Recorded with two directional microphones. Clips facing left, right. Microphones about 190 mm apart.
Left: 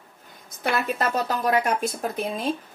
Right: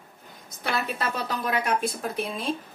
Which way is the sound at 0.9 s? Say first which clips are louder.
Left 5 dB; 45° left (ahead or behind).